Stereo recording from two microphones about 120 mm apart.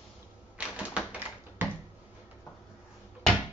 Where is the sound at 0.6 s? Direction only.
10° right (ahead or behind).